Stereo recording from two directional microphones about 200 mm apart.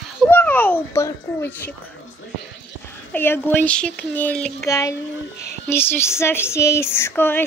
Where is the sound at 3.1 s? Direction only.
10° left (ahead or behind).